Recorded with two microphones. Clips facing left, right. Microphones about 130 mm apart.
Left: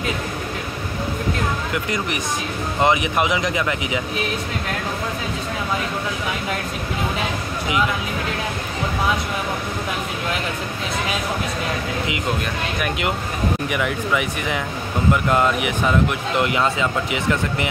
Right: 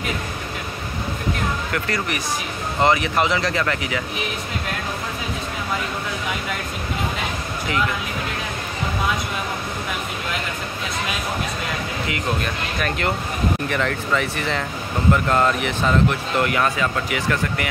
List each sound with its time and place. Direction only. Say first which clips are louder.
1.7 s speech: left 1 dB; 20° left (ahead or behind)
13.7 s speech: even; 10° left (ahead or behind)